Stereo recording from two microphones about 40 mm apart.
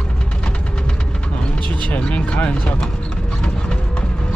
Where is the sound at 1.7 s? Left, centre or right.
Left.